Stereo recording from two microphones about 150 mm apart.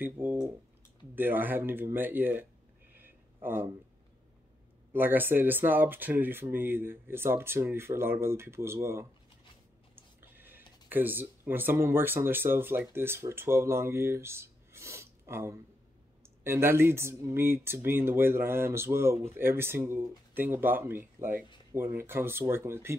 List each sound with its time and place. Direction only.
0.0 s speech: 15° right (ahead or behind)
2.9 s a sound: 15° right (ahead or behind)
4.9 s speech: 15° right (ahead or behind)
10.3 s speech: 15° right (ahead or behind)